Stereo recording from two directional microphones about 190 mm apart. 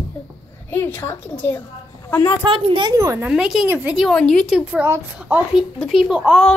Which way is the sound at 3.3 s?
5° right (ahead or behind).